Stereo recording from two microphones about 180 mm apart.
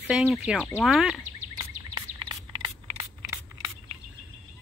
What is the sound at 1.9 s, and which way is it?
Bird, 25° right (ahead or behind).